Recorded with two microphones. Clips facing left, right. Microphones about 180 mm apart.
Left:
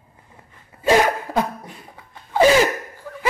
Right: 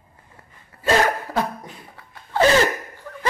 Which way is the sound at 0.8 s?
15° left (ahead or behind).